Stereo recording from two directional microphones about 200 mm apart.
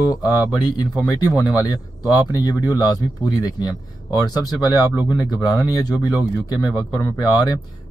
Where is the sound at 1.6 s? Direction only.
20° left (ahead or behind).